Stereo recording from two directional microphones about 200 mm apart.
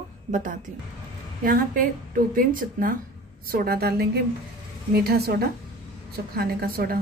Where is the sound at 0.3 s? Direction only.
40° right (ahead or behind).